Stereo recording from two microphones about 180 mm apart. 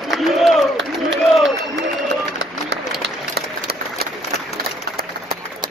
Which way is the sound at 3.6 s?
60° right (ahead or behind).